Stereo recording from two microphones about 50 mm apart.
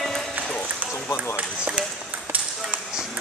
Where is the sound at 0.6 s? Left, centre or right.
Right.